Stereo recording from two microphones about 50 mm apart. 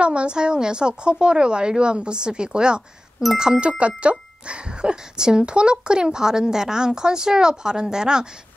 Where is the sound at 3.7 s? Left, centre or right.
Right.